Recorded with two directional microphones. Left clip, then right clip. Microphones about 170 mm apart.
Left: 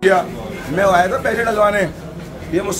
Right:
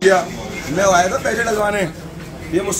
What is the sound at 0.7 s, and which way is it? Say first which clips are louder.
Speech: left 1 dB; 15° left (ahead or behind).